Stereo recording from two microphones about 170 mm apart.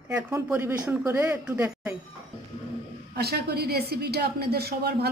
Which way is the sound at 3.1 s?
70° right (ahead or behind).